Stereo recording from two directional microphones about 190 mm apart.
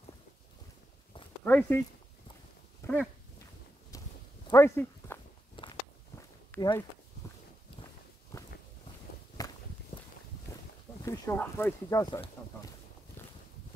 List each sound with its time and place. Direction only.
1.4 s speech: 10° left (ahead or behind)
2.8 s dog: 15° left (ahead or behind)
3.9 s a sound: 15° left (ahead or behind)
5.6 s walk: 25° left (ahead or behind)
6.5 s speech: 20° left (ahead or behind)
8.3 s walk: 15° left (ahead or behind)
10.5 s a sound: 15° left (ahead or behind)
11.1 s speech: 15° left (ahead or behind)